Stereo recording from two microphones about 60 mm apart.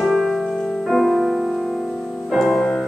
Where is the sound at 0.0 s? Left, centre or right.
Centre.